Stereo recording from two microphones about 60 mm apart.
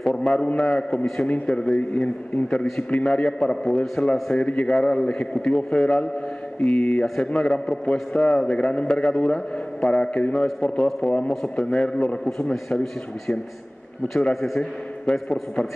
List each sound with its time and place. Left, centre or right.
0.0 s a man's voice: centre
1.2 s a man's voice: centre
2.4 s a man's voice: centre
11.1 s a man's voice: centre
14.3 s a man's voice: centre